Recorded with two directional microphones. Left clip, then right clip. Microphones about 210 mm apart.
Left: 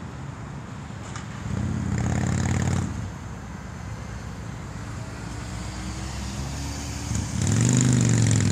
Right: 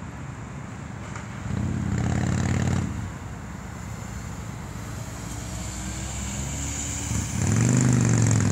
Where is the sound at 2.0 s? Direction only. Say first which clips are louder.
Even; 45° right (ahead or behind).